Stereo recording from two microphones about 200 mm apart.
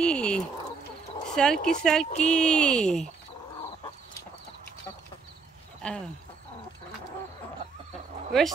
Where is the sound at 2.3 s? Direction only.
5° left (ahead or behind).